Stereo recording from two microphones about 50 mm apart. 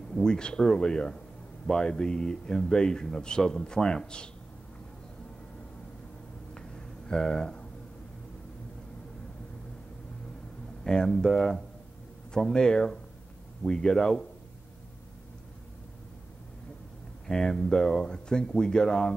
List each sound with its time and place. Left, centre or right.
0.1 s speech: centre
6.5 s a sound: centre
10.9 s speech: centre
17.3 s speech: centre